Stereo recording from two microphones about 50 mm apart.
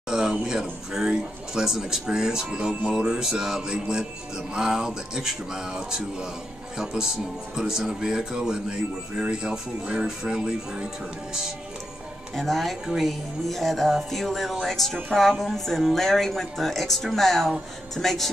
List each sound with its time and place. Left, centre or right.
0.1 s speech: centre
12.4 s speech: centre